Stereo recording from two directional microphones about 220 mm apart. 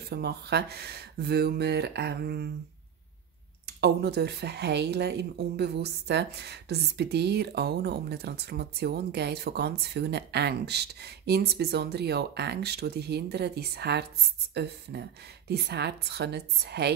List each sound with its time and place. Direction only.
0.1 s speech: 50° right (ahead or behind)
3.6 s speech: 45° right (ahead or behind)